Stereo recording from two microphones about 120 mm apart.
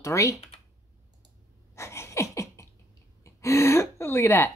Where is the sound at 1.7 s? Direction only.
25° left (ahead or behind).